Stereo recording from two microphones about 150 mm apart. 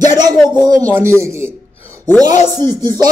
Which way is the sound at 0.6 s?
25° right (ahead or behind).